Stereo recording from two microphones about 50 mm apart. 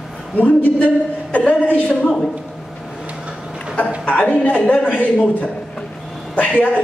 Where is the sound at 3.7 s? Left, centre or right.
Left.